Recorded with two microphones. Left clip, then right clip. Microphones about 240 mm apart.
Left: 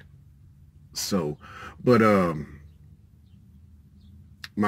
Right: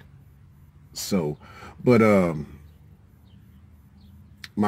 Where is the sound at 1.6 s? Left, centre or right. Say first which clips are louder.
Right 1 dB; centre.